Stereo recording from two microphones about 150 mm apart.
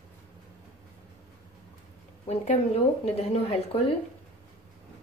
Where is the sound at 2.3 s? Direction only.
45° left (ahead or behind).